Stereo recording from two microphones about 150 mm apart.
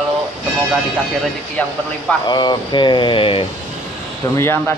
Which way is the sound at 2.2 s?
30° left (ahead or behind).